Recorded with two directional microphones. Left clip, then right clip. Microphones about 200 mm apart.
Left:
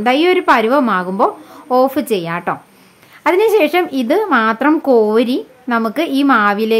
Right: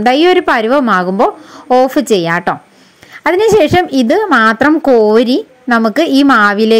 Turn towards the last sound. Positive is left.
turn(degrees=-25)  # may be behind; listen again after turning